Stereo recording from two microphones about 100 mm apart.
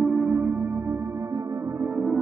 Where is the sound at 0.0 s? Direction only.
Centre (ahead or behind).